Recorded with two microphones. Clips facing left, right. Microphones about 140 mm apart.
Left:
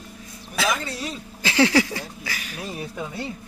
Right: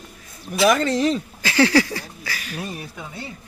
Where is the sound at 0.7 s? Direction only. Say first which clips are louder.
Right 10 dB; 90° right.